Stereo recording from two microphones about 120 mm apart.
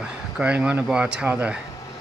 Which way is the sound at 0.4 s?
10° right (ahead or behind).